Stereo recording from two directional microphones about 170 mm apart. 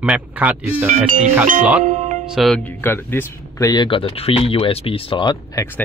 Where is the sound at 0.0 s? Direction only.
10° right (ahead or behind).